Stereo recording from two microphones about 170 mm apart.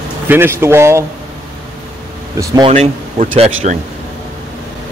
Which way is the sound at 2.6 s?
40° right (ahead or behind).